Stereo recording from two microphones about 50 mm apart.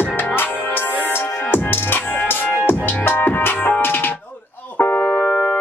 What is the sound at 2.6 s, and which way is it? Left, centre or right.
Music, left.